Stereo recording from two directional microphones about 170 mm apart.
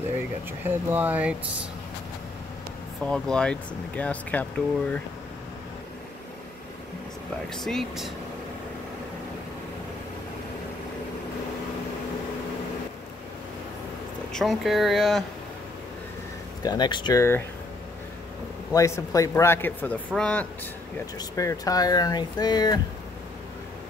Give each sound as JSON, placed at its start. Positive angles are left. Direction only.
{"t": 0.7, "sound": "speech", "side_deg": -10}
{"t": 3.1, "sound": "speech", "side_deg": 5}
{"t": 7.4, "sound": "speech", "side_deg": 0}
{"t": 14.3, "sound": "speech", "side_deg": 0}
{"t": 16.6, "sound": "speech", "side_deg": 25}
{"t": 18.7, "sound": "speech", "side_deg": 20}
{"t": 21.2, "sound": "speech", "side_deg": 20}